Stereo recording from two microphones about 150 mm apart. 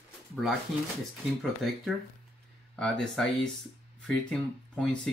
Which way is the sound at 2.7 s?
5° left (ahead or behind).